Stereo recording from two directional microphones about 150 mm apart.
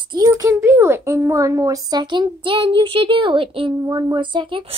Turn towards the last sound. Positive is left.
turn(degrees=-30)  # may be behind; listen again after turning